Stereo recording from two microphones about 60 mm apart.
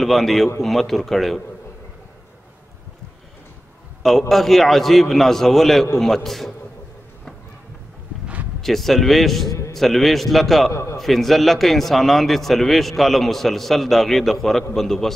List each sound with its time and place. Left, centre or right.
0.0 s a man's voice: centre
4.3 s a man's voice: centre
8.5 s a man's voice: centre
9.5 s a sound: left
9.8 s a man's voice: centre
10.7 s a man's voice: left
11.0 s a man's voice: centre